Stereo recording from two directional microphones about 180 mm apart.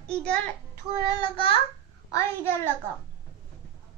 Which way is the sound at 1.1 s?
25° left (ahead or behind).